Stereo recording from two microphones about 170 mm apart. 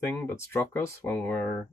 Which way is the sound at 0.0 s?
15° left (ahead or behind).